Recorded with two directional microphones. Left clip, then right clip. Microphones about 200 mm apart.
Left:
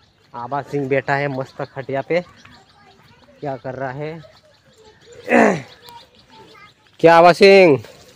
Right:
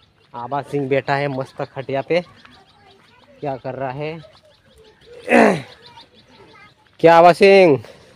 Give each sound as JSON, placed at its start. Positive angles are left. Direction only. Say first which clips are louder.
{"t": 0.3, "sound": "a man's voice", "louder": "even", "side_deg": 0}
{"t": 3.3, "sound": "a man's voice", "louder": "right 1 dB", "side_deg": -5}
{"t": 5.2, "sound": "wild animals", "louder": "right 1 dB", "side_deg": -10}
{"t": 7.0, "sound": "speech", "louder": "even", "side_deg": 5}